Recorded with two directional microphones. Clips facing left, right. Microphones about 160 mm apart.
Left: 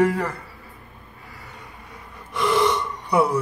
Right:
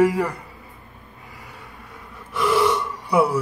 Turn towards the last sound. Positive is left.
turn(degrees=-5)  # may be behind; listen again after turning